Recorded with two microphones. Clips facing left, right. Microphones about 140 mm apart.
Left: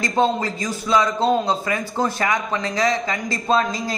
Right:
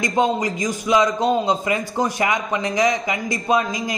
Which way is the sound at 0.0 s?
15° right (ahead or behind).